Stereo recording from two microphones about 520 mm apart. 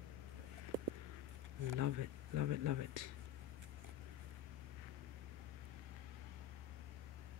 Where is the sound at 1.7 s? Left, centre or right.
Right.